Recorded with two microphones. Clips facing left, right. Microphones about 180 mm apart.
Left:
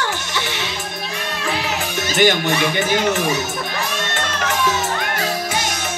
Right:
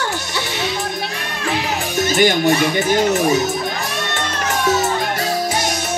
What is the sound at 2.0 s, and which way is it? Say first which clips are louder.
Music: right 2 dB; 40° right (ahead or behind).